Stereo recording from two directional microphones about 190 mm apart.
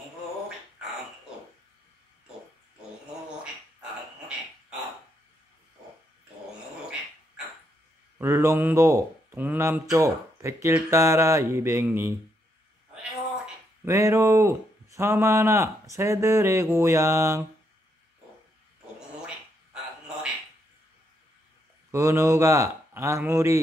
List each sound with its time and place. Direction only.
8.2 s speech: 15° right (ahead or behind)
13.8 s speech: 15° right (ahead or behind)
18.9 s a sound: 5° right (ahead or behind)
21.9 s speech: 15° right (ahead or behind)